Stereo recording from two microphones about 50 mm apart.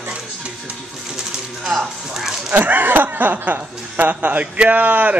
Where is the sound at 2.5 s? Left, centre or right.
Right.